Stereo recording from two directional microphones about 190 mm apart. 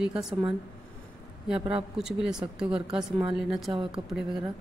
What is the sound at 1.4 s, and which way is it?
Speech, 5° right (ahead or behind).